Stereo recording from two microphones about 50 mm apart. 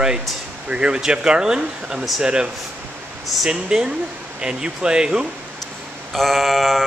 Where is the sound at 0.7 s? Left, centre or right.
Centre.